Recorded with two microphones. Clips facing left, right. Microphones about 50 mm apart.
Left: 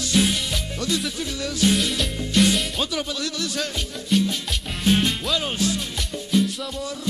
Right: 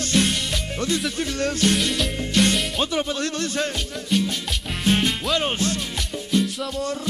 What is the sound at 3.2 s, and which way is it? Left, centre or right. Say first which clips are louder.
Music: right 3 dB; right.